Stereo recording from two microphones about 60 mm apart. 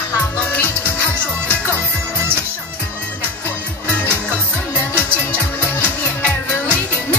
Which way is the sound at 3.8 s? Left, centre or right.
Left.